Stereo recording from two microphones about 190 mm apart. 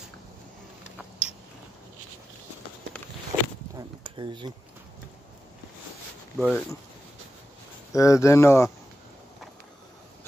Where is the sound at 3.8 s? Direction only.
25° right (ahead or behind).